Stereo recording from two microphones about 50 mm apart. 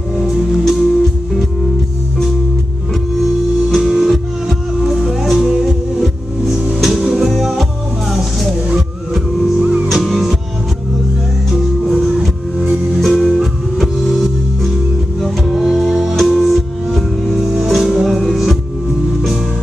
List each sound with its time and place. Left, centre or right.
0.1 s music: centre
3.7 s music: centre
9.6 s music: right
9.8 s music: centre
11.5 s music: centre